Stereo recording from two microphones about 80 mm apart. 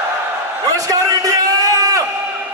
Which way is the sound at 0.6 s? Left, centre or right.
Right.